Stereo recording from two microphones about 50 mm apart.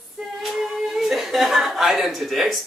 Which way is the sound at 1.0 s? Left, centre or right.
Centre.